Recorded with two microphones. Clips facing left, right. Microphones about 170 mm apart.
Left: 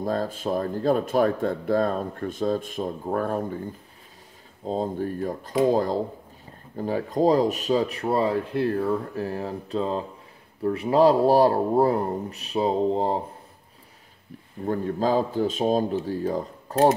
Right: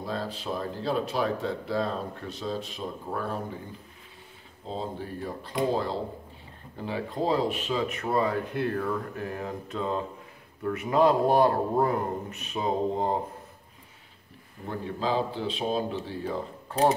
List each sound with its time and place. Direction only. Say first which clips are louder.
0.0 s speech: left 7 dB; 45° left (ahead or behind)
4.6 s speech: left 8 dB; 45° left (ahead or behind)
14.7 s speech: left 6 dB; 45° left (ahead or behind)